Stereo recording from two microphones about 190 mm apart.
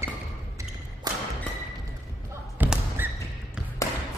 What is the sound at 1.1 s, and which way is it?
Music, 20° right (ahead or behind).